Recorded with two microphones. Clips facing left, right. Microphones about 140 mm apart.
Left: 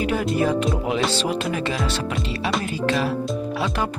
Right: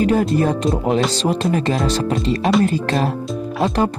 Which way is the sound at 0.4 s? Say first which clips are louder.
Right 3 dB; 40° right (ahead or behind).